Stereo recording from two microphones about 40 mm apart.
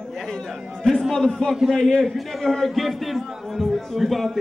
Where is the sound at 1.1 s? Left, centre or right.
Centre.